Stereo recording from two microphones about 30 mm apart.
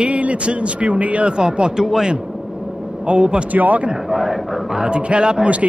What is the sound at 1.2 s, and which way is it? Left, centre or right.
Speech, right.